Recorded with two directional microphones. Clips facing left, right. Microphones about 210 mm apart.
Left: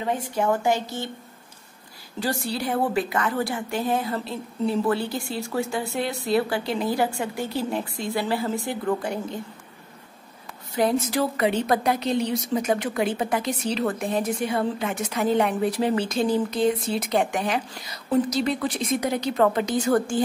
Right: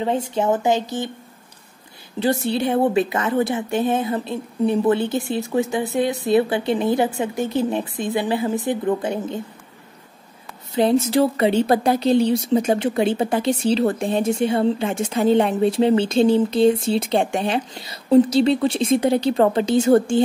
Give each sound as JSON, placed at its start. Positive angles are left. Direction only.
{"t": 0.0, "sound": "speech", "side_deg": -25}
{"t": 2.1, "sound": "speech", "side_deg": -20}
{"t": 10.7, "sound": "speech", "side_deg": -25}